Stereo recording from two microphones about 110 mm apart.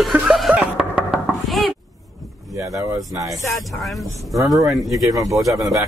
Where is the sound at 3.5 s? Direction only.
Centre (ahead or behind).